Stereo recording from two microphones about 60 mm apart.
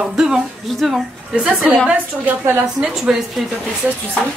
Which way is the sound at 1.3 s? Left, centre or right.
Centre.